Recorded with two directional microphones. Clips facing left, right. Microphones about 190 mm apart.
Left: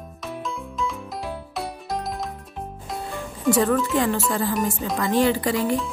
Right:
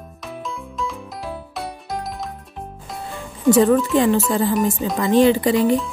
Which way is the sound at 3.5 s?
20° right (ahead or behind).